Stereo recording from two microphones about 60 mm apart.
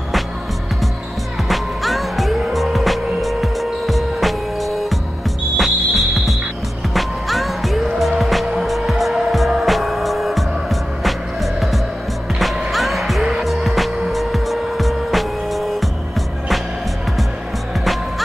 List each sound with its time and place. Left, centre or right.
1.5 s music: centre
12.4 s music: centre